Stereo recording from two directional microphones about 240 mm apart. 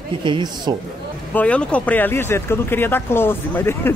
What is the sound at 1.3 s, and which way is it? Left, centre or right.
Speech, centre.